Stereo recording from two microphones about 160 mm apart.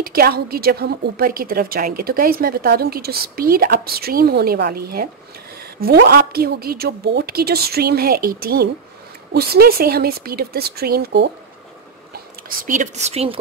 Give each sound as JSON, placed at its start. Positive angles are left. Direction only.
{"t": 0.0, "sound": "a woman's voice", "side_deg": -70}
{"t": 5.8, "sound": "a woman's voice", "side_deg": -80}
{"t": 12.1, "sound": "speech", "side_deg": -55}